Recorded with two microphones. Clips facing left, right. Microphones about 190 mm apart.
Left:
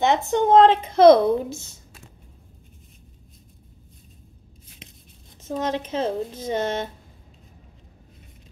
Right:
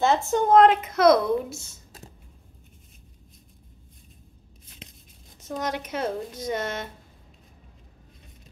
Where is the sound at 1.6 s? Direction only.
35° right (ahead or behind).